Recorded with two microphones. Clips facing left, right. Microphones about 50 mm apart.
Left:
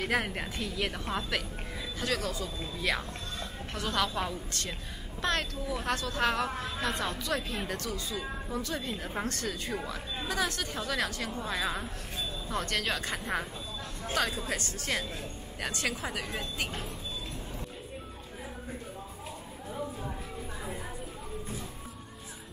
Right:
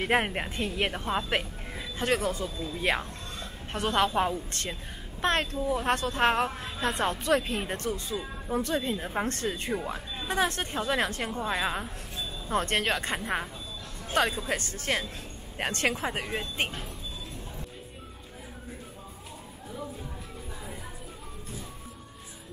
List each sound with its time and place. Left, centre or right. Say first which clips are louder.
0.0 s speech: right 4 dB; right
14.2 s a woman's voice: right 5 dB; right
16.0 s speech: right 4 dB; right